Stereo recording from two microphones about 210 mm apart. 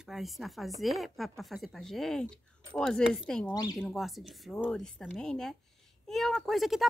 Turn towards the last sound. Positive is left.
turn(degrees=0)  # may be behind; listen again after turning